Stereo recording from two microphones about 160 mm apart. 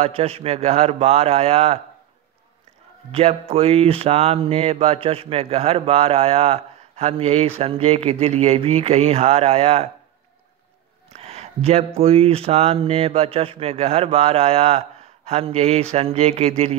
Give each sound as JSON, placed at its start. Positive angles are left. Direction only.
{"t": 0.0, "sound": "speech", "side_deg": -40}
{"t": 3.1, "sound": "speech", "side_deg": -40}
{"t": 11.1, "sound": "speech", "side_deg": -40}